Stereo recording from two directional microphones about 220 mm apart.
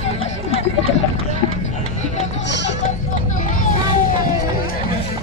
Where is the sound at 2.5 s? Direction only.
55° left (ahead or behind).